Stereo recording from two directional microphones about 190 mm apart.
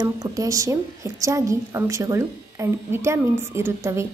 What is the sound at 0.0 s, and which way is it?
A woman's voice, 20° right (ahead or behind).